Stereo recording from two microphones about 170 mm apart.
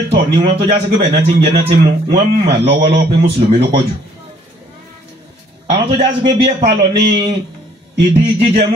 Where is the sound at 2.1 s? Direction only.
30° right (ahead or behind).